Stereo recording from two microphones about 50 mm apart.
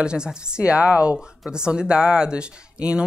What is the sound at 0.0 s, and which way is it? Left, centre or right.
Speech, centre.